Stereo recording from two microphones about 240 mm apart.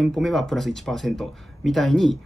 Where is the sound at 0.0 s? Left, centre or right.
Centre.